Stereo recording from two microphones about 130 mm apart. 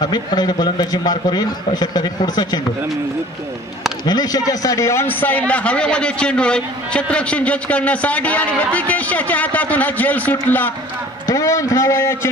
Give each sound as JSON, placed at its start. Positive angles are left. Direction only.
{"t": 0.0, "sound": "a man's voice", "side_deg": 30}
{"t": 4.0, "sound": "a man's voice", "side_deg": 30}